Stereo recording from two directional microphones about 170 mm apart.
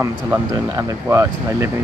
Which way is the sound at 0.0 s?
15° right (ahead or behind).